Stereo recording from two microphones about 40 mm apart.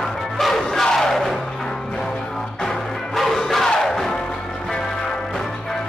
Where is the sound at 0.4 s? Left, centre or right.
Centre.